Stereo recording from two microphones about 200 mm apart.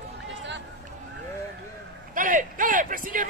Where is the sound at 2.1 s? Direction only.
40° right (ahead or behind).